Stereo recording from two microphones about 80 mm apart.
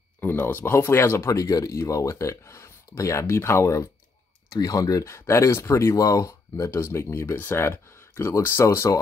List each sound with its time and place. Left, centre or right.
0.2 s speech: left
4.5 s speech: left